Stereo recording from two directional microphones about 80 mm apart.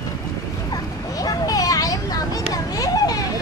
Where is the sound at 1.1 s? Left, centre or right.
Left.